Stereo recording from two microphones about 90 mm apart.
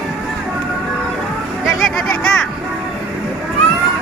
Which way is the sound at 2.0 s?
10° left (ahead or behind).